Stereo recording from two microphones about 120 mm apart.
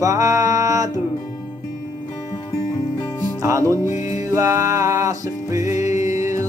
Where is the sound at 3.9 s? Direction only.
75° left (ahead or behind).